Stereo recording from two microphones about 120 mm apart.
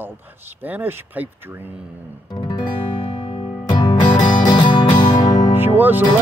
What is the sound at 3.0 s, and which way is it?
Music, 45° left (ahead or behind).